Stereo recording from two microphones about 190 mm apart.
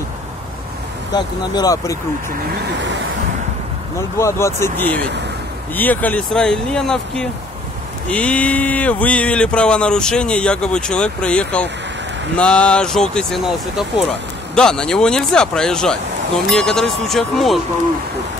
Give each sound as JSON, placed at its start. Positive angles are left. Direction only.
{"t": 1.1, "sound": "speech", "side_deg": 20}
{"t": 4.2, "sound": "speech", "side_deg": 15}